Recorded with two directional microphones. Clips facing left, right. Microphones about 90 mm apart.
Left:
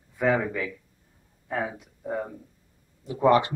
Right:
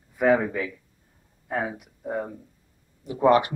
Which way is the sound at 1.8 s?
15° right (ahead or behind).